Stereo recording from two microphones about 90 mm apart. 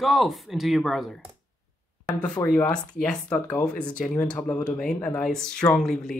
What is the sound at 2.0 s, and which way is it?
Speech, 15° left (ahead or behind).